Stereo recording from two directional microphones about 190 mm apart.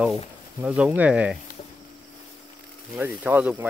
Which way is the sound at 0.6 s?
5° right (ahead or behind).